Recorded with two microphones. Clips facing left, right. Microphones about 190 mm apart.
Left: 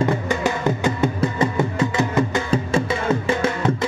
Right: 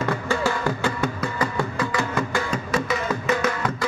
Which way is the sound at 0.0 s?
20° left (ahead or behind).